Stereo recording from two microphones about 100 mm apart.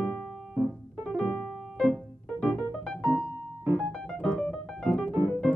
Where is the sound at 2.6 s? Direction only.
15° right (ahead or behind).